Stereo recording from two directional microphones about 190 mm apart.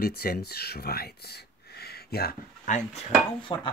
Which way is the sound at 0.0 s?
55° left (ahead or behind).